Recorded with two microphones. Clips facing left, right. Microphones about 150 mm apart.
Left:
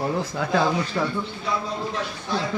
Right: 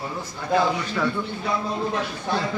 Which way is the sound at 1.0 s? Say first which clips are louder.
Right 4 dB; 25° left (ahead or behind).